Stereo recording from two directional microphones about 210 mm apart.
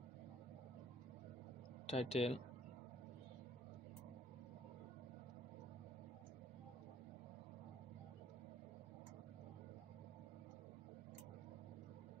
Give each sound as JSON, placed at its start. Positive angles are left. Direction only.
{"t": 1.9, "sound": "a man's voice", "side_deg": 30}